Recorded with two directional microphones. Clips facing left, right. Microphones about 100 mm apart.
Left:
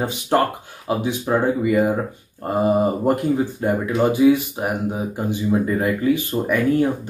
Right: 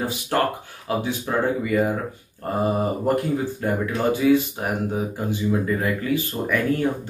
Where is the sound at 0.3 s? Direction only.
25° left (ahead or behind).